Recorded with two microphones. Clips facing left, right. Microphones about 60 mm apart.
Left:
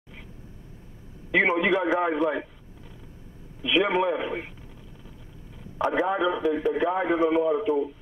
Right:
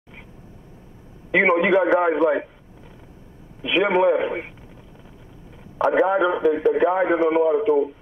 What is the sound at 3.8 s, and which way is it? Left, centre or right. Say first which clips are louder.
Speech: right 11 dB; centre.